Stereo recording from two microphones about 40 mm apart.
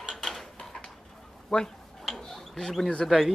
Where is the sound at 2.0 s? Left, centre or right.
Centre.